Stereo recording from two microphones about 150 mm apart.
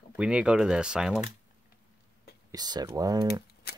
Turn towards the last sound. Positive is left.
turn(degrees=-25)  # may be behind; listen again after turning